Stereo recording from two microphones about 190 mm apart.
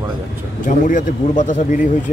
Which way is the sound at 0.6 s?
45° left (ahead or behind).